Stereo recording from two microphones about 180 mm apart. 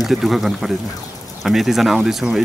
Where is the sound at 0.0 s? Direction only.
Centre (ahead or behind).